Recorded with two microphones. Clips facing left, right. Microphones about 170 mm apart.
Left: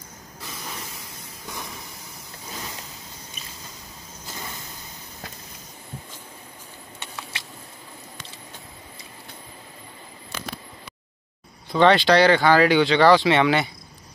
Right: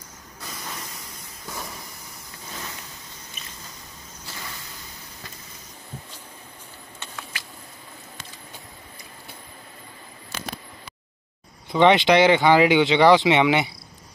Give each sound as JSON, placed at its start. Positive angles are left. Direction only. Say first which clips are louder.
{"t": 11.7, "sound": "speech", "louder": "even", "side_deg": -20}